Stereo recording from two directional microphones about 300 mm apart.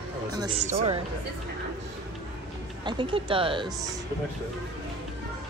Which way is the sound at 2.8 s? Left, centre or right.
Centre.